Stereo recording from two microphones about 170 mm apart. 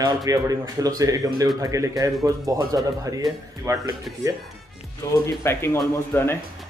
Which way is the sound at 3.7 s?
20° right (ahead or behind).